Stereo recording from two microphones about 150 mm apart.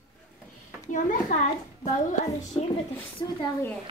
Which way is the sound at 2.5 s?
25° left (ahead or behind).